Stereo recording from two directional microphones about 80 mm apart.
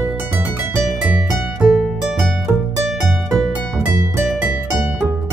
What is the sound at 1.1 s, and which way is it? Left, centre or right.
Music, centre.